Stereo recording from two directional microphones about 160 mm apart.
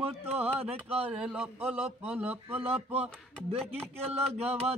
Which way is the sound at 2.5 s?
40° right (ahead or behind).